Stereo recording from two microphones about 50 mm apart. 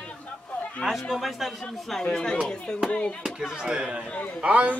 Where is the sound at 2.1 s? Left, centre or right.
Centre.